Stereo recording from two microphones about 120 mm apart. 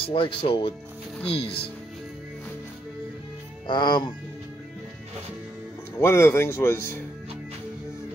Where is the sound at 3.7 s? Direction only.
40° left (ahead or behind).